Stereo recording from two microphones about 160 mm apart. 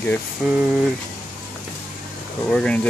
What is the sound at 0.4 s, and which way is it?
Speech, 10° right (ahead or behind).